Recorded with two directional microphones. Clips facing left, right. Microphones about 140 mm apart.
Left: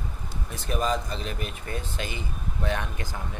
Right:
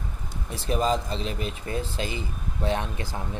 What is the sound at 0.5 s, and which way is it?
Speech, 25° right (ahead or behind).